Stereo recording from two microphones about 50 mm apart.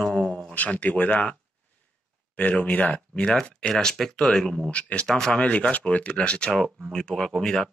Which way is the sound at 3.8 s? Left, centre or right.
Centre.